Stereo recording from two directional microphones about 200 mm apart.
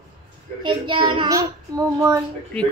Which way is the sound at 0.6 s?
25° right (ahead or behind).